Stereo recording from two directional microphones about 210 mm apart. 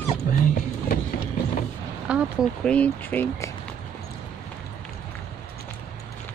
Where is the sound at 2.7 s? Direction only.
5° left (ahead or behind).